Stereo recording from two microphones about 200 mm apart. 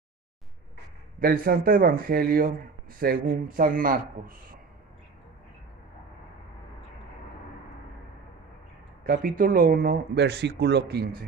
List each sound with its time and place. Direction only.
1.2 s speech: 45° right (ahead or behind)
9.0 s speech: 45° right (ahead or behind)